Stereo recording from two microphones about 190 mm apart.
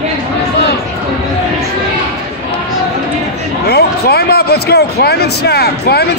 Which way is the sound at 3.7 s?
55° left (ahead or behind).